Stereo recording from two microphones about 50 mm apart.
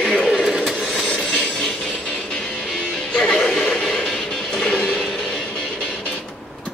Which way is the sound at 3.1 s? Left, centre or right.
Centre.